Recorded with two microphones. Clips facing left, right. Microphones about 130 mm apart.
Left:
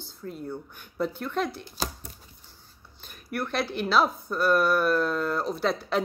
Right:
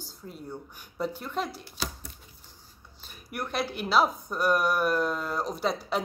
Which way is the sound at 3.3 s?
15° right (ahead or behind).